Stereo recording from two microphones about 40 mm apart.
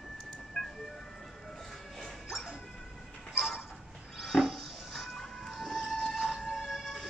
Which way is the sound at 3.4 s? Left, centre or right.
Centre.